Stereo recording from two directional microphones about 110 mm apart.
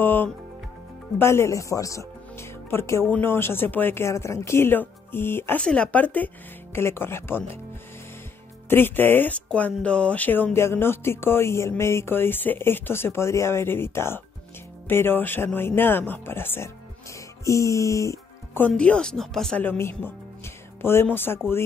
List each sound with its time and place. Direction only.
0.0 s music: 20° left (ahead or behind)
1.1 s speech: 25° left (ahead or behind)
5.6 s speech: 10° left (ahead or behind)
8.6 s speech: 20° left (ahead or behind)
17.5 s music: 30° left (ahead or behind)
18.7 s speech: 10° left (ahead or behind)
19.6 s speech: 20° left (ahead or behind)